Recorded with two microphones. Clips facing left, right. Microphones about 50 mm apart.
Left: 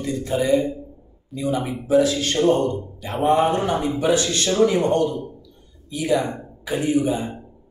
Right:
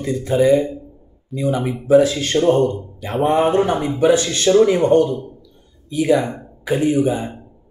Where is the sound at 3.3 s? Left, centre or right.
Right.